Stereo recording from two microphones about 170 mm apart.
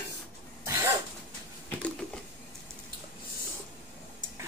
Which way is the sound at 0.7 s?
15° right (ahead or behind).